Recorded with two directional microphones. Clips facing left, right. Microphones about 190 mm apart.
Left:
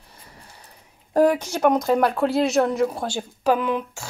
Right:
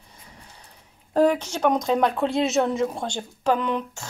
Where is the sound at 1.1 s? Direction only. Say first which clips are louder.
Left 2 dB; 10° left (ahead or behind).